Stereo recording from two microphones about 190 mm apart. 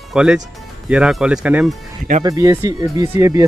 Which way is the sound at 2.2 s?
20° right (ahead or behind).